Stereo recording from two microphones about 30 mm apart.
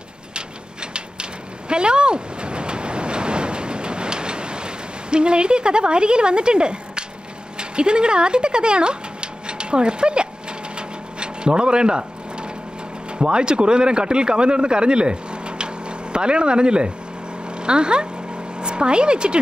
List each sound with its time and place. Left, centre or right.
1.7 s vehicle: right
7.5 s speech: right
10.8 s a sound: right
13.2 s speech: right